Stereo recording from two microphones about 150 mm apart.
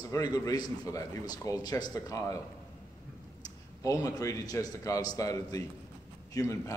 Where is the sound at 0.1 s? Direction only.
25° left (ahead or behind).